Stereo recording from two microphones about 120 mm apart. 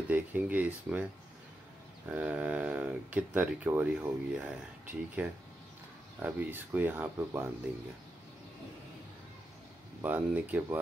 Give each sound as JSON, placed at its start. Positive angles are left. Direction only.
{"t": 0.1, "sound": "speech", "side_deg": -15}
{"t": 2.0, "sound": "speech", "side_deg": -10}
{"t": 10.0, "sound": "speech", "side_deg": -15}